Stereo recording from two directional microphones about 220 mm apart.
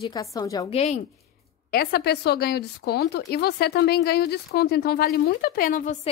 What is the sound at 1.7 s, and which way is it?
A woman's voice, 45° left (ahead or behind).